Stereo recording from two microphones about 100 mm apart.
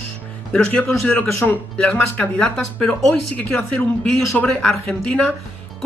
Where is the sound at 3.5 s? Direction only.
20° left (ahead or behind).